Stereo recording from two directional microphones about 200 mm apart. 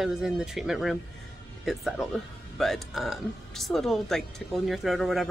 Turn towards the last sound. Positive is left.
turn(degrees=0)  # may be behind; listen again after turning